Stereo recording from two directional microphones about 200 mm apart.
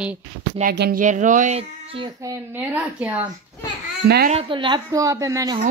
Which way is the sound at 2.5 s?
10° right (ahead or behind).